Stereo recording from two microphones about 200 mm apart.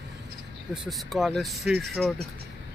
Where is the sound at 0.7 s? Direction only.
Centre (ahead or behind).